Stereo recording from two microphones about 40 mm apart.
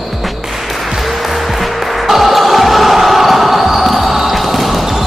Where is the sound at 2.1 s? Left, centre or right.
Centre.